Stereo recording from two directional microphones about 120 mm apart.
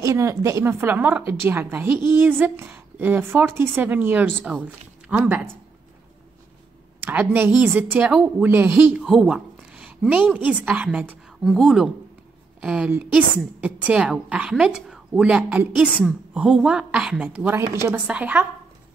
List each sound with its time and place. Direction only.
0.0 s a woman's voice: 25° right (ahead or behind)
7.0 s a woman's voice: 15° right (ahead or behind)
9.0 s a woman's voice: 5° right (ahead or behind)
11.4 s a woman's voice: centre (ahead or behind)